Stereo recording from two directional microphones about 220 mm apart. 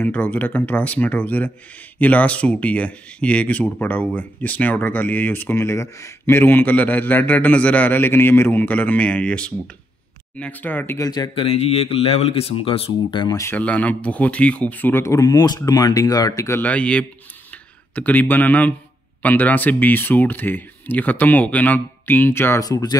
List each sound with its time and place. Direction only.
0.0 s speech: 5° left (ahead or behind)